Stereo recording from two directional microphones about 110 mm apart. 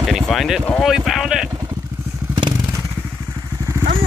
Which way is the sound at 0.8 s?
Centre (ahead or behind).